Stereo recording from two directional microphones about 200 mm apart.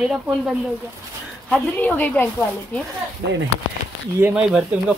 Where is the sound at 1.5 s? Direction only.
5° left (ahead or behind).